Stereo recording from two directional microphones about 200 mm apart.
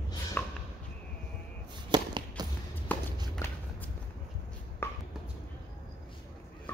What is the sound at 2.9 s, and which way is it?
Walk, 10° left (ahead or behind).